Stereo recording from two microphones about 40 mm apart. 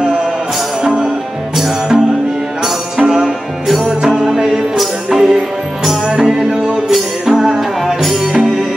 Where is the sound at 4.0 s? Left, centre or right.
Centre.